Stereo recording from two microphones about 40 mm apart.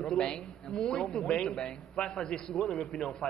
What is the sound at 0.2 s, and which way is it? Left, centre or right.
A man's voice, centre.